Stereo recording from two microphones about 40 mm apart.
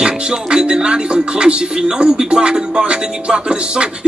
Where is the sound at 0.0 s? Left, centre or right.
Centre.